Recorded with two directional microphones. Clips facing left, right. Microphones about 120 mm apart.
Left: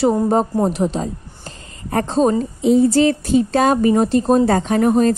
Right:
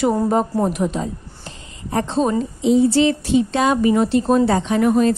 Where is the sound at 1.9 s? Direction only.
45° left (ahead or behind).